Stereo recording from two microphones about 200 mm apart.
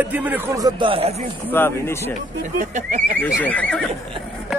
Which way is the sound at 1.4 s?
10° left (ahead or behind).